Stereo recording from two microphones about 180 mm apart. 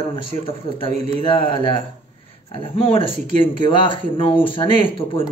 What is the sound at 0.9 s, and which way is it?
Speech, 35° right (ahead or behind).